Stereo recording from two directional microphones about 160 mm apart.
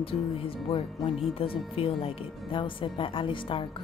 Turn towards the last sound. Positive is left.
turn(degrees=30)  # may be behind; listen again after turning